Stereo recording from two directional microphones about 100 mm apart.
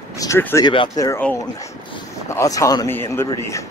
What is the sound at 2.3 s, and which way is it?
Speech, 30° left (ahead or behind).